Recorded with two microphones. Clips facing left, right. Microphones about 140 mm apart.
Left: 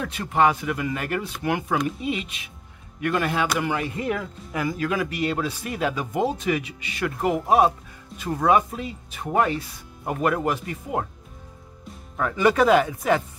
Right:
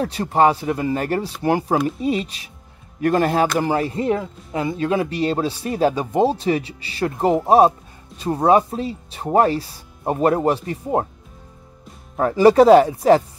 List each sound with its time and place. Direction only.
0.0 s speech: 35° right (ahead or behind)
12.2 s speech: 35° right (ahead or behind)